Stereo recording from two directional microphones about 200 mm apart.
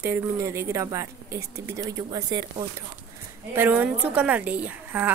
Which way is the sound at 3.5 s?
10° right (ahead or behind).